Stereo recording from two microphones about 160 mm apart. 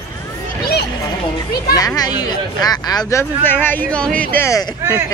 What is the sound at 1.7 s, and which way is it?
Speech, 25° left (ahead or behind).